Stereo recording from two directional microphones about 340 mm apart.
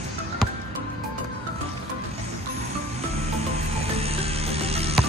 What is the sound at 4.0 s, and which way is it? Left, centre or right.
Music, centre.